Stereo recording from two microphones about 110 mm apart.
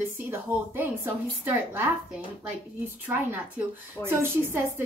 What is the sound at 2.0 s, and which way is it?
Speech, 5° right (ahead or behind).